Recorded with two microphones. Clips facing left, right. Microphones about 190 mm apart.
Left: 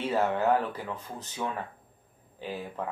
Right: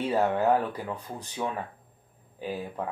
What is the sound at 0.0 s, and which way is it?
Speech, 15° right (ahead or behind).